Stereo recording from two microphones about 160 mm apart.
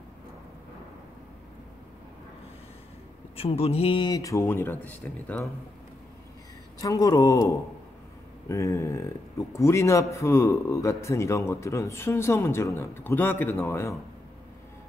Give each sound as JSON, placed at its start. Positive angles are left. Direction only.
{"t": 3.3, "sound": "a man's voice", "side_deg": 40}
{"t": 6.8, "sound": "a man's voice", "side_deg": 20}
{"t": 8.5, "sound": "speech", "side_deg": 20}